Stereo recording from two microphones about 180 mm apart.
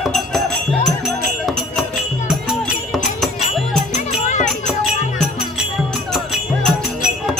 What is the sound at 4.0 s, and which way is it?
Music, 45° left (ahead or behind).